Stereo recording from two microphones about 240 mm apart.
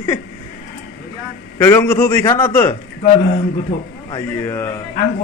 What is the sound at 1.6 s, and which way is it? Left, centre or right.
Speech, centre.